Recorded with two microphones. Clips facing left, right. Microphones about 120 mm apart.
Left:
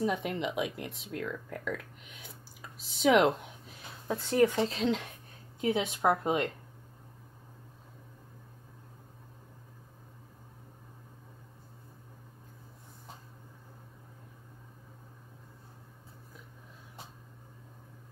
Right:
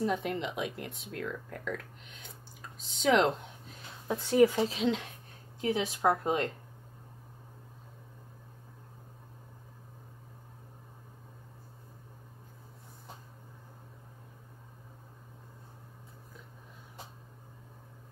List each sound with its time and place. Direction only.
0.0 s speech: centre (ahead or behind)
4.1 s speech: 10° right (ahead or behind)
5.6 s a woman's voice: 20° left (ahead or behind)